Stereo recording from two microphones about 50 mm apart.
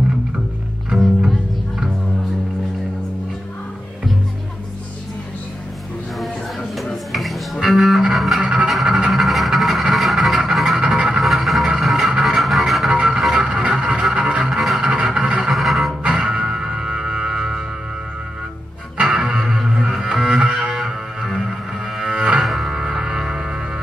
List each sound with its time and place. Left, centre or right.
0.9 s music: centre
7.1 s music: centre
8.4 s music: right
8.6 s music: centre
12.9 s music: right
13.6 s a sound: right
14.1 s music: right
14.5 s music: centre
14.8 s music: centre
15.5 s music: centre
16.0 s music: right
19.1 s music: centre
20.2 s music: centre
20.7 s music: centre